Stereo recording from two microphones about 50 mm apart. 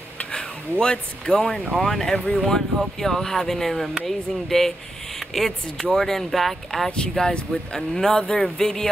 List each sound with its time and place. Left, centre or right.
0.3 s speech: centre
6.9 s speech: centre